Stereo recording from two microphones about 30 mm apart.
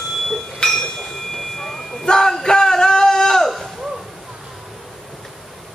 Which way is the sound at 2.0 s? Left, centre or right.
Left.